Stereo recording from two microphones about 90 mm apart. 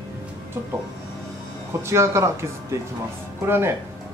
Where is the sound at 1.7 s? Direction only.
30° right (ahead or behind).